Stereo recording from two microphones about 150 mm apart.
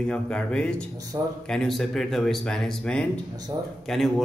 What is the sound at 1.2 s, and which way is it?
Speech, 15° right (ahead or behind).